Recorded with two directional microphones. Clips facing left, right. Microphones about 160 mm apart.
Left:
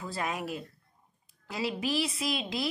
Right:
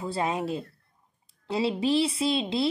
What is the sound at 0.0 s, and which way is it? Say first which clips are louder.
A woman's voice: right 6 dB; 30° right (ahead or behind).